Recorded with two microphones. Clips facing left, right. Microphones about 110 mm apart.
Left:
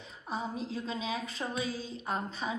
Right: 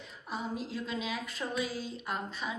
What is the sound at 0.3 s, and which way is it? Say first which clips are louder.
A woman's voice: left 1 dB; 35° left (ahead or behind).